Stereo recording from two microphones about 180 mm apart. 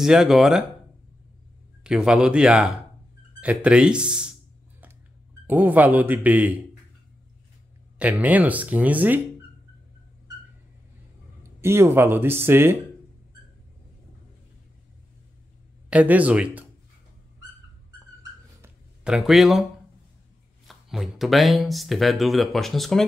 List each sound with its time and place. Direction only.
0.0 s speech: 5° right (ahead or behind)
1.8 s speech: 5° right (ahead or behind)
5.5 s speech: 10° right (ahead or behind)
8.0 s speech: 10° right (ahead or behind)
11.6 s speech: 15° right (ahead or behind)
15.9 s speech: 10° right (ahead or behind)
18.6 s a sound: 5° right (ahead or behind)
20.6 s speech: centre (ahead or behind)